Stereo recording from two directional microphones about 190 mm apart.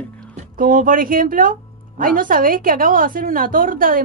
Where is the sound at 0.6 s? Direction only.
45° right (ahead or behind).